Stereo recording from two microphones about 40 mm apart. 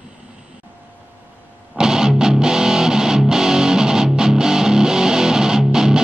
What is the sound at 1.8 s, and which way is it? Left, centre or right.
Music, centre.